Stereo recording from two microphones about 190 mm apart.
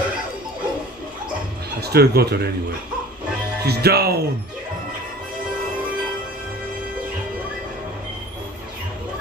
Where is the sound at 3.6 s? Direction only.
55° right (ahead or behind).